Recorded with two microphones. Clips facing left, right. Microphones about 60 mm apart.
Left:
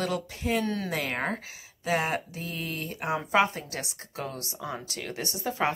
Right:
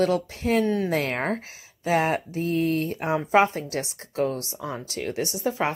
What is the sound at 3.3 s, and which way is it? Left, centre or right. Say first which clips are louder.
A woman's voice: right 5 dB; right.